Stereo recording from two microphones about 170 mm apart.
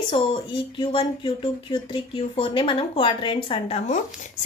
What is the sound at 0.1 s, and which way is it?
Speech, 30° left (ahead or behind).